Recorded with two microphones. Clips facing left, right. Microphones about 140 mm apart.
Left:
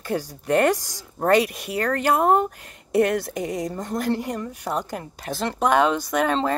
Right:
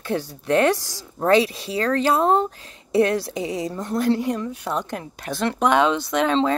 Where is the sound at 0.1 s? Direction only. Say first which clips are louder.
Right 1 dB; 10° left (ahead or behind).